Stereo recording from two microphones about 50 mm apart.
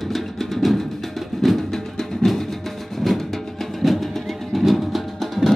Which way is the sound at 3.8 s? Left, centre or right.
Centre.